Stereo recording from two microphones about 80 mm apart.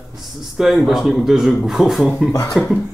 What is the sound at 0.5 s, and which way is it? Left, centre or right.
Speech, centre.